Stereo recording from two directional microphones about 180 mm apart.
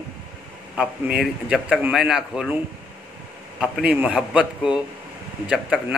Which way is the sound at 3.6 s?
5° right (ahead or behind).